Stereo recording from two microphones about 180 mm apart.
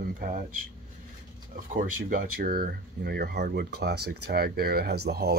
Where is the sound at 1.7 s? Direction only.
50° right (ahead or behind).